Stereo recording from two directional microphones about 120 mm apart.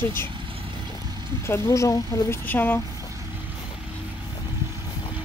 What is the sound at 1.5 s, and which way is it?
A woman's voice, 25° left (ahead or behind).